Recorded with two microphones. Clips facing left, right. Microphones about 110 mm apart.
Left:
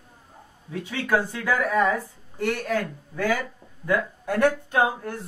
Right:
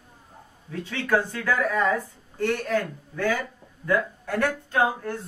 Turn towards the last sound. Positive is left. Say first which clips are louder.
# left 2 dB
turn(degrees=15)  # may be behind; listen again after turning